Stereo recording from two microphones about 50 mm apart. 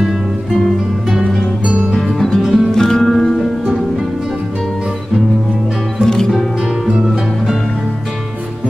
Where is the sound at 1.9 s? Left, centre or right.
Centre.